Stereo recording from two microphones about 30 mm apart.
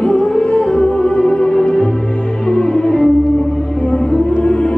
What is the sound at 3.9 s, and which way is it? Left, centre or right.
Music, left.